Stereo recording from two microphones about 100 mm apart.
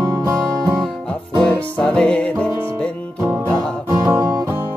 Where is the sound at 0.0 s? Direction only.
35° right (ahead or behind).